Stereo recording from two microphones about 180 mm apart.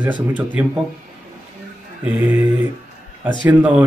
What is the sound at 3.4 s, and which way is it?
Speech, 10° right (ahead or behind).